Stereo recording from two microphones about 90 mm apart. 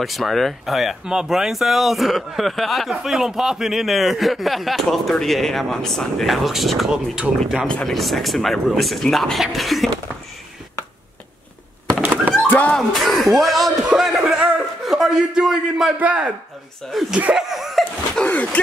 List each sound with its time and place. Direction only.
0.0 s speech: centre (ahead or behind)
7.6 s speech: 5° left (ahead or behind)
12.0 s thunk: 20° right (ahead or behind)
12.4 s dog: 20° left (ahead or behind)
12.7 s speech: centre (ahead or behind)
13.8 s a sound: 5° right (ahead or behind)
16.0 s a man's voice: 15° right (ahead or behind)
16.9 s speech: centre (ahead or behind)
17.4 s laughter: centre (ahead or behind)
18.2 s a sound: 15° left (ahead or behind)